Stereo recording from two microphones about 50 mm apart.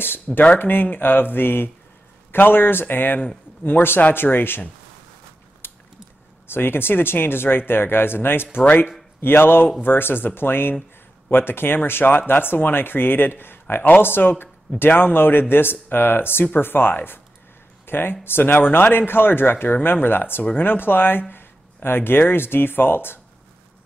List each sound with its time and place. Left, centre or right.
0.0 s a sound: left
0.6 s speech: left
5.6 s mechanisms: left
6.5 s speech: left